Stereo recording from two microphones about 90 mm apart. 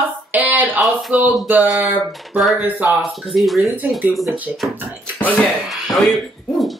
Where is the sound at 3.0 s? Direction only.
Centre (ahead or behind).